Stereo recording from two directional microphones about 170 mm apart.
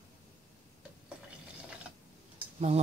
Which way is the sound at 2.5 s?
40° right (ahead or behind).